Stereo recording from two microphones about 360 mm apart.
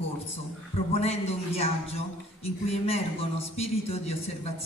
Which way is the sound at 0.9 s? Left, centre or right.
Centre.